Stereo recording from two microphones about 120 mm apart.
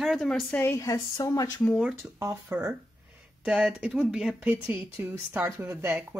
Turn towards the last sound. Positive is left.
turn(degrees=-20)  # may be behind; listen again after turning